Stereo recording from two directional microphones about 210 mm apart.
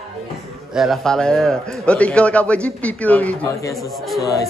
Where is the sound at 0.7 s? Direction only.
Centre (ahead or behind); by 4.5 s 15° left (ahead or behind).